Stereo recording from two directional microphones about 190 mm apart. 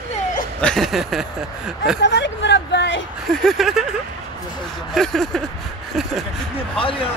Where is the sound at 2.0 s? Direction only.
70° left (ahead or behind).